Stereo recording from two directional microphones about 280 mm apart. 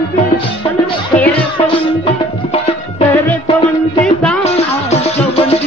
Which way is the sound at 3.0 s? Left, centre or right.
Centre.